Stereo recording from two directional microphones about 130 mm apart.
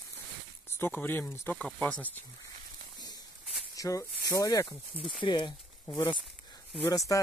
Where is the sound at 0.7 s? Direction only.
20° left (ahead or behind).